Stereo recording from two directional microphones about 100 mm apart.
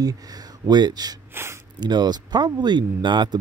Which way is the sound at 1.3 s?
25° right (ahead or behind).